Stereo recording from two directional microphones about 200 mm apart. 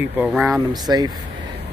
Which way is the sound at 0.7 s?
20° right (ahead or behind).